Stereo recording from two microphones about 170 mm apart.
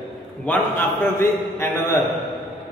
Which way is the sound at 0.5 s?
15° left (ahead or behind).